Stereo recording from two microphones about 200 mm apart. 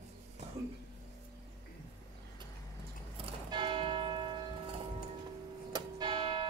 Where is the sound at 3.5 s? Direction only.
25° right (ahead or behind).